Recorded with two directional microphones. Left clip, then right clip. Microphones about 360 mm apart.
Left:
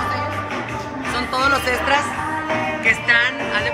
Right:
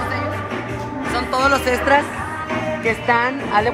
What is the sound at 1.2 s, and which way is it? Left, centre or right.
Speech, right.